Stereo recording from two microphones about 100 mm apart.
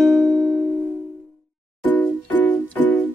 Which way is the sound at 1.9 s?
15° left (ahead or behind).